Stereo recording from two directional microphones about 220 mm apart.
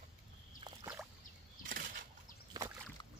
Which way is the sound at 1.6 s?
40° right (ahead or behind).